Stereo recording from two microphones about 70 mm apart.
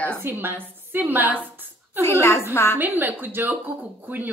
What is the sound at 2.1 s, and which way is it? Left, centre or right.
Speech, left.